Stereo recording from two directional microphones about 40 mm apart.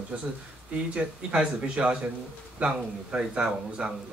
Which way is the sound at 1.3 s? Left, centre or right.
Right.